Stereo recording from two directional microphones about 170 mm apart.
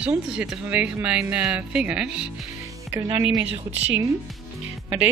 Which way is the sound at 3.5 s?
40° right (ahead or behind).